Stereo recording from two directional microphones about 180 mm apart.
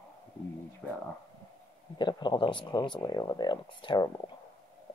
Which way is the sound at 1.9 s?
25° left (ahead or behind).